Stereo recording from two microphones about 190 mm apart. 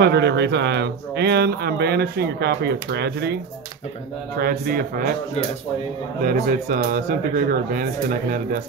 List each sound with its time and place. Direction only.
0.0 s speech: 65° right (ahead or behind)
4.4 s a man's voice: 50° right (ahead or behind)
6.2 s a man's voice: 50° right (ahead or behind)